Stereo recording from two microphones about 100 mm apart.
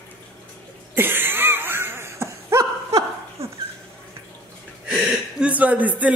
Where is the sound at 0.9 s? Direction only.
20° right (ahead or behind).